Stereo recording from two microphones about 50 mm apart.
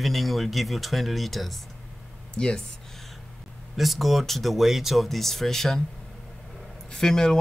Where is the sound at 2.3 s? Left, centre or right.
Centre.